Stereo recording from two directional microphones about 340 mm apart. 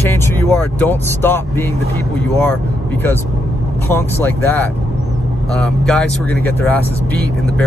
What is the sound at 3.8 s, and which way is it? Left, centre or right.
Speech, centre.